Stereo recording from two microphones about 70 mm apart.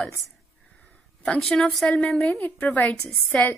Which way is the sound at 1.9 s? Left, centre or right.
Centre.